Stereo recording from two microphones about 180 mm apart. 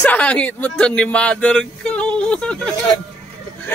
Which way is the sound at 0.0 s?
5° left (ahead or behind).